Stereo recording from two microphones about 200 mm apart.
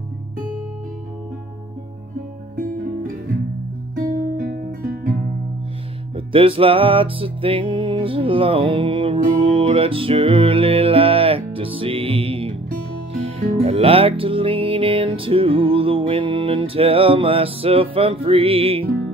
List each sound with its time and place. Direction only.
2.5 s music: 45° right (ahead or behind)
4.4 s guitar: 45° right (ahead or behind)
6.1 s music: 25° right (ahead or behind)